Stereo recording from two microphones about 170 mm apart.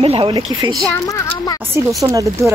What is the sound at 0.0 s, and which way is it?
Speech, 30° right (ahead or behind).